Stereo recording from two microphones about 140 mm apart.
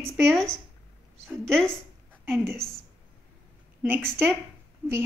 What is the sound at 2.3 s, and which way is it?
Speech, 20° right (ahead or behind).